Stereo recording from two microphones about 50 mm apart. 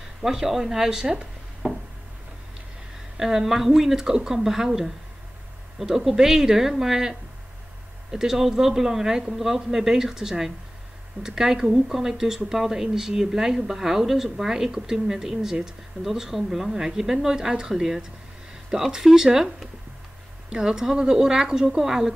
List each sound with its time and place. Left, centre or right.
0.2 s speech: centre
1.6 s a sound: centre
3.2 s speech: centre